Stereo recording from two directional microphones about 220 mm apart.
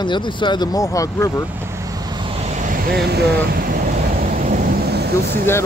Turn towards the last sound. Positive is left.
turn(degrees=-45)  # may be behind; listen again after turning